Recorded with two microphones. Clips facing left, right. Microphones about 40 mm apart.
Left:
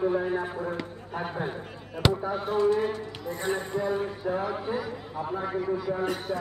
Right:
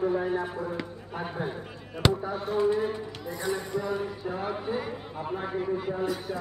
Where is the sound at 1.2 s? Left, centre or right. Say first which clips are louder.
Left 2 dB; centre.